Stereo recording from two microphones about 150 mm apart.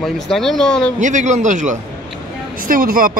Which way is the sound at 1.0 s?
55° right (ahead or behind).